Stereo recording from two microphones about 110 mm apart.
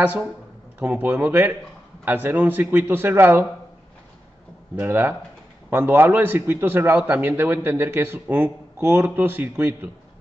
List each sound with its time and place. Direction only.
0.7 s a man's voice: 15° right (ahead or behind)
4.7 s a man's voice: 20° right (ahead or behind)